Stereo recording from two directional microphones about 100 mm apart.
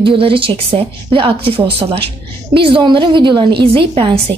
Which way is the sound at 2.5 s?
60° right (ahead or behind).